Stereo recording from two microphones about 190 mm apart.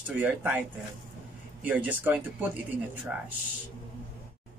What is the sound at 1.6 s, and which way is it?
Speech, 10° right (ahead or behind).